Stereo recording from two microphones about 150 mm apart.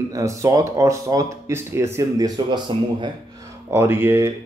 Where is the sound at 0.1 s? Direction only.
20° right (ahead or behind).